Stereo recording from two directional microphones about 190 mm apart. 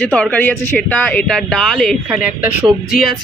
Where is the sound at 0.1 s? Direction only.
5° left (ahead or behind).